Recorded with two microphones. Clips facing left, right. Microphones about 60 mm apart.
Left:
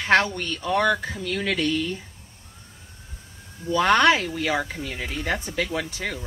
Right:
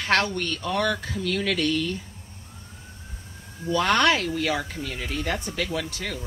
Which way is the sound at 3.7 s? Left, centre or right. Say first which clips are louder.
Left 3 dB; centre.